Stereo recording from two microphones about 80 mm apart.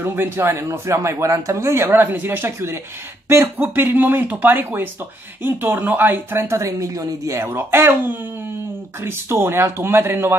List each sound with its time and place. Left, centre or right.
0.0 s speech: right